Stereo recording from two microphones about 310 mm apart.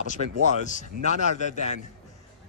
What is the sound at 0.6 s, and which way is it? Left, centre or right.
Speech, left.